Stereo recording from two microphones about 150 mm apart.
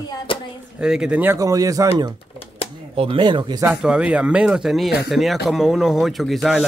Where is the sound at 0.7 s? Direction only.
5° right (ahead or behind); by 3.6 s 30° right (ahead or behind).